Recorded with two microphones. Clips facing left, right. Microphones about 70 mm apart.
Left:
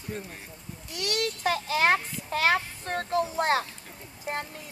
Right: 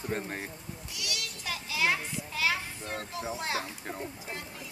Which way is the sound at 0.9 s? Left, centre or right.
Left.